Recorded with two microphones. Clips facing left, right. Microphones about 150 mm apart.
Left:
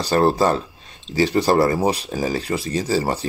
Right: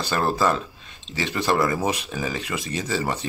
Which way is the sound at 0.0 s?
35° left (ahead or behind).